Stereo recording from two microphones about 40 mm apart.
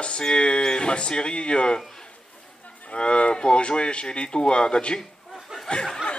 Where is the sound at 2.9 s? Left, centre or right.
Left.